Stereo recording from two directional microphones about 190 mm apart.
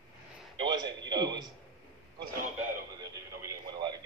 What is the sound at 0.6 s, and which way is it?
Speech, 20° right (ahead or behind).